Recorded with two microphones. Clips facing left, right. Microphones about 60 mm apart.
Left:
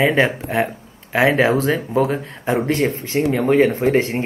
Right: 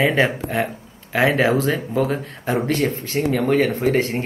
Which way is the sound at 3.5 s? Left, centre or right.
Left.